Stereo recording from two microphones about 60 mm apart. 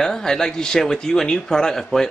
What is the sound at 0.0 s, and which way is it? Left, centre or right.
Speech, centre.